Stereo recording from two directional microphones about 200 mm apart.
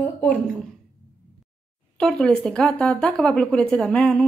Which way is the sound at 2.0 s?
5° left (ahead or behind).